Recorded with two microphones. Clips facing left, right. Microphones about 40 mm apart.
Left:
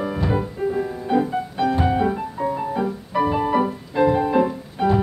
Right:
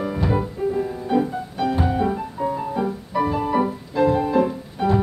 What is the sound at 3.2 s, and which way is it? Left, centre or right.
Music, left.